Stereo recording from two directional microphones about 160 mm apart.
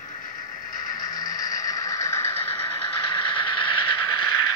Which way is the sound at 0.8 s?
25° left (ahead or behind).